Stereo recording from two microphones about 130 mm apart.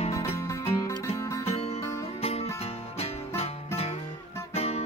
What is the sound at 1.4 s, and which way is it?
Music, 50° left (ahead or behind).